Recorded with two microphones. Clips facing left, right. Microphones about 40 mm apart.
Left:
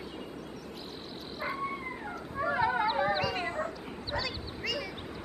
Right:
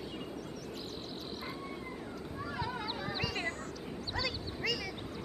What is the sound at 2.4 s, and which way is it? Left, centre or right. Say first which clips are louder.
Dog: left 11 dB; left.